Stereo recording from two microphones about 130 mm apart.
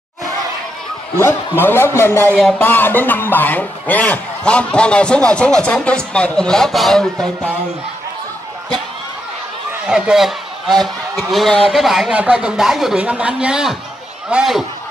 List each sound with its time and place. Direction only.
1.2 s speech: 15° left (ahead or behind)
9.8 s speech: 5° right (ahead or behind)